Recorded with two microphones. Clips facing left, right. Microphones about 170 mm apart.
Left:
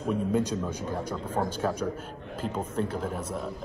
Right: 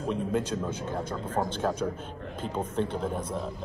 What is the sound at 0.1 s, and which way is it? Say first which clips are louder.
A man's voice: left 3 dB; 10° left (ahead or behind).